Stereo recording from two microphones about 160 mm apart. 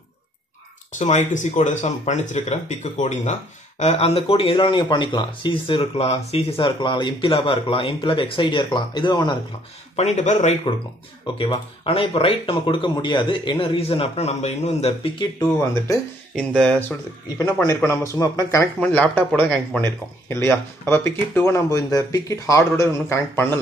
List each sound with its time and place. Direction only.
0.9 s speech: 50° left (ahead or behind); by 9.4 s 30° left (ahead or behind)
9.9 s speech: 45° left (ahead or behind)
11.3 s speech: 35° left (ahead or behind)
16.3 s speech: 5° left (ahead or behind)
17.6 s speech: 15° left (ahead or behind)
18.8 s speech: 10° left (ahead or behind)